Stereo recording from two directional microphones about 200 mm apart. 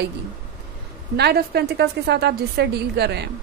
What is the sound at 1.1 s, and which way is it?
Speech, 55° right (ahead or behind).